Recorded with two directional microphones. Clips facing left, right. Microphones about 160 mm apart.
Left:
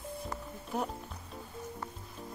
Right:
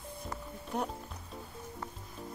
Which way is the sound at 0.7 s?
5° left (ahead or behind).